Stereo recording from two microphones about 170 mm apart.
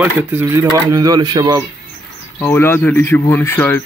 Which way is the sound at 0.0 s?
10° right (ahead or behind).